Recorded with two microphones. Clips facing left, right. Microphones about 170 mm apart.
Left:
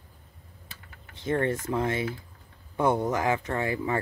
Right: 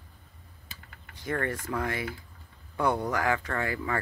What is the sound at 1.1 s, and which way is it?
Speech, 25° left (ahead or behind).